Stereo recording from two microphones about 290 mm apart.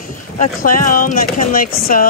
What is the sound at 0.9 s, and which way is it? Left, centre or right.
Speech, left.